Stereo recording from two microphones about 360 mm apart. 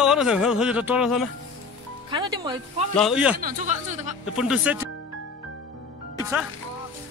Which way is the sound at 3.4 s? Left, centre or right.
Right.